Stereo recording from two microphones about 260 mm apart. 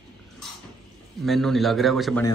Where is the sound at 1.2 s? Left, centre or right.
Centre.